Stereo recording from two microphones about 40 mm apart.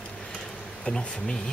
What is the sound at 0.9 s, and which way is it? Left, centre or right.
Speech, left.